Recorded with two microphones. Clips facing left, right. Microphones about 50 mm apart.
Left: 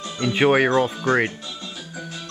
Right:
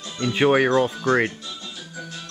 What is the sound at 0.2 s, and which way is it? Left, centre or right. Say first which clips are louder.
Speech: left 1 dB; centre.